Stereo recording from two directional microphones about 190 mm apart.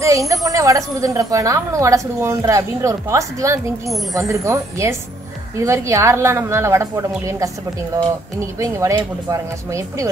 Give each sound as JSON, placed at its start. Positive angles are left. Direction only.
{"t": 0.0, "sound": "speech", "side_deg": -15}
{"t": 8.5, "sound": "speech", "side_deg": -15}